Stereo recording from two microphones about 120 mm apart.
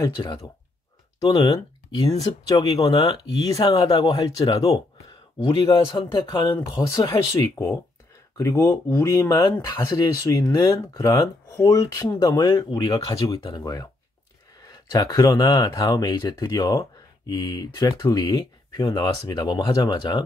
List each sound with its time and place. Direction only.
0.0 s speech: 40° left (ahead or behind)
1.2 s speech: 55° left (ahead or behind)
1.5 s speech: 35° left (ahead or behind)
5.5 s speech: 40° left (ahead or behind)